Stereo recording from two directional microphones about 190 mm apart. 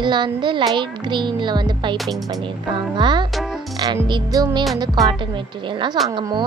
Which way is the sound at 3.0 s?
25° right (ahead or behind).